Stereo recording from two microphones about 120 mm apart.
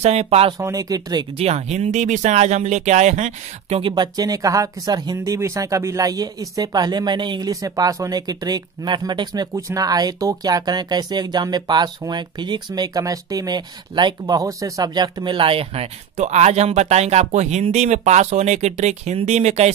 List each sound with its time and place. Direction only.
0.0 s speech: 65° right (ahead or behind)
0.6 s speech: 30° right (ahead or behind)
1.4 s speech: 60° right (ahead or behind)
3.8 s speech: 35° right (ahead or behind); by 19.7 s 65° right (ahead or behind)